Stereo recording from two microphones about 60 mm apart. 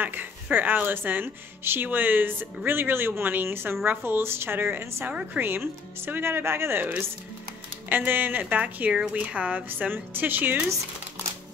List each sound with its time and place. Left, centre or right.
0.0 s a woman's voice: right
7.9 s a woman's voice: right